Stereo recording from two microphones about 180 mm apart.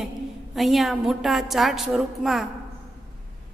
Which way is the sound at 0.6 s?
Centre (ahead or behind).